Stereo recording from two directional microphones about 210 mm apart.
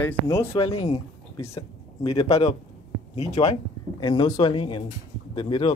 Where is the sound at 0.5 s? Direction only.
25° left (ahead or behind).